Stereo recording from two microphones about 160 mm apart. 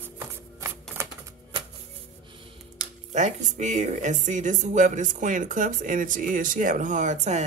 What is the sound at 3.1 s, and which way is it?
Speech, 50° right (ahead or behind).